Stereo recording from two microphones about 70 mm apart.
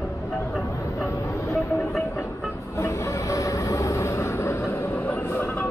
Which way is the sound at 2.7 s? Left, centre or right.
Left.